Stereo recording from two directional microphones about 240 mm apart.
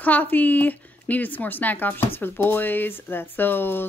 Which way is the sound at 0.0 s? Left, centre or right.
Centre.